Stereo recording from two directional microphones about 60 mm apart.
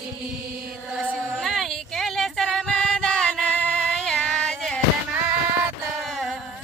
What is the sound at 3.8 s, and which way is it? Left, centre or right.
Music, centre.